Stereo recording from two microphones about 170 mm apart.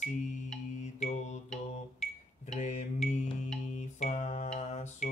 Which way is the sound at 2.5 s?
45° left (ahead or behind).